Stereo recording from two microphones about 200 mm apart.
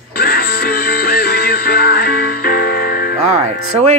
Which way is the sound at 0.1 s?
50° left (ahead or behind).